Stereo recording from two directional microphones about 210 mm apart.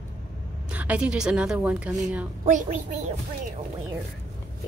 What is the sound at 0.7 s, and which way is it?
Speech, 5° right (ahead or behind).